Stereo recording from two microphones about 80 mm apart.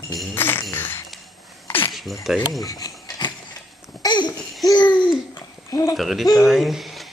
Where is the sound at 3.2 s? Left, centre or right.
Left.